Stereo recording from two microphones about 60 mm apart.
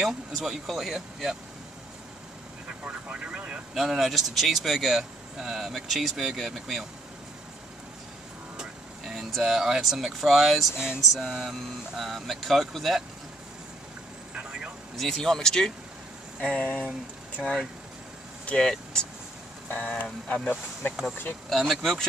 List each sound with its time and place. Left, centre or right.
0.0 s speech: centre
2.8 s speech: centre
3.7 s speech: centre
8.5 s speech: centre
14.3 s vehicle: centre
15.0 s speech: centre
18.6 s speech: centre
19.7 s speech: left
21.1 s speech: left
21.5 s speech: centre